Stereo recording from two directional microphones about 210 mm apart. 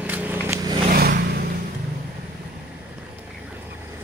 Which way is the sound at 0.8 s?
45° right (ahead or behind).